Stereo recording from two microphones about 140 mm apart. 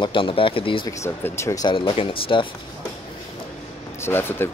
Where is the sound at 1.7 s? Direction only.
35° left (ahead or behind).